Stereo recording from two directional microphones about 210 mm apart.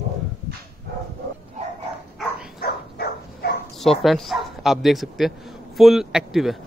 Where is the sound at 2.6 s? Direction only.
50° left (ahead or behind).